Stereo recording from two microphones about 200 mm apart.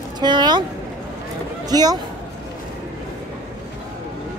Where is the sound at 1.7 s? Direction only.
20° right (ahead or behind).